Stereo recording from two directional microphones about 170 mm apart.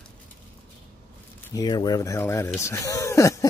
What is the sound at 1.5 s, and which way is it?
Speech, 25° left (ahead or behind).